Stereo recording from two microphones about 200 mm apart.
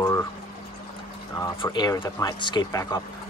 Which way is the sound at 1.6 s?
20° left (ahead or behind).